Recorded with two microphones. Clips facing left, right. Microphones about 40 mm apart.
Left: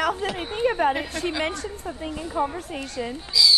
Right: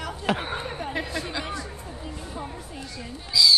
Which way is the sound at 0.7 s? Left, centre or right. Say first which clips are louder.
Left 9 dB; left.